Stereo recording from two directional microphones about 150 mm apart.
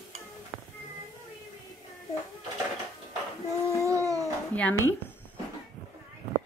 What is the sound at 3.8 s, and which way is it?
Dog, 20° right (ahead or behind).